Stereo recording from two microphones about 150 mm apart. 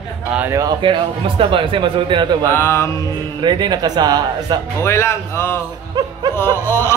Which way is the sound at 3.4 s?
30° right (ahead or behind).